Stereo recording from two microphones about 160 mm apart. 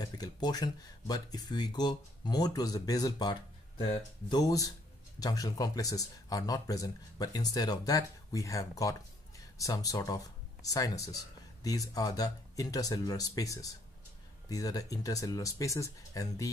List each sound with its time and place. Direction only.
0.0 s speech: 25° left (ahead or behind)